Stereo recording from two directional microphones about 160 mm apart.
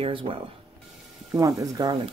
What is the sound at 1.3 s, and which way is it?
Speech, 20° right (ahead or behind).